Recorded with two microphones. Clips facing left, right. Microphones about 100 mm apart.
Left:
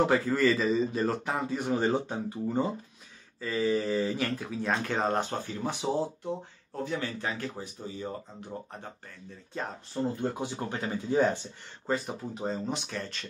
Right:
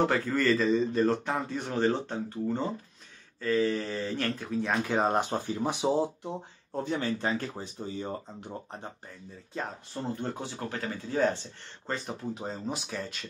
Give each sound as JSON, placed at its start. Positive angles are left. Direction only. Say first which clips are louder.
{"t": 0.1, "sound": "speech", "louder": "left 1 dB", "side_deg": 5}
{"t": 4.8, "sound": "speech", "louder": "right 2 dB", "side_deg": -15}
{"t": 10.2, "sound": "speech", "louder": "left 3 dB", "side_deg": 15}
{"t": 11.9, "sound": "speech", "louder": "left 3 dB", "side_deg": 0}